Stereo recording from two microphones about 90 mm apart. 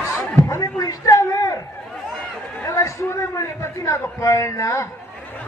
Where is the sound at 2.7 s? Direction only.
35° left (ahead or behind).